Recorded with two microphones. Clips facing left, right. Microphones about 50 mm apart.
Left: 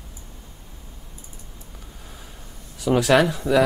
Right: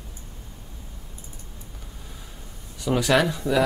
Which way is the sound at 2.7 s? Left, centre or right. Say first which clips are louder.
Left 3 dB; centre.